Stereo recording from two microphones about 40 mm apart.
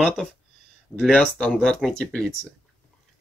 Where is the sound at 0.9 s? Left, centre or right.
Left.